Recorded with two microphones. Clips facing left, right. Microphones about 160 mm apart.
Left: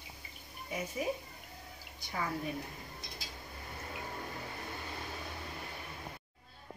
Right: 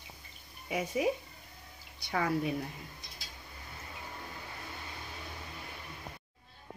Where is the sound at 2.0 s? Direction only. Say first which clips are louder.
Right 5 dB; 70° right (ahead or behind).